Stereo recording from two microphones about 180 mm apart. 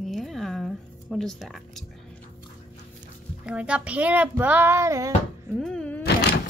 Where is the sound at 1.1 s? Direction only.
Centre (ahead or behind).